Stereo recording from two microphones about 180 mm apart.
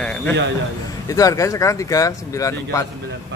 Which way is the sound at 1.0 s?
20° left (ahead or behind).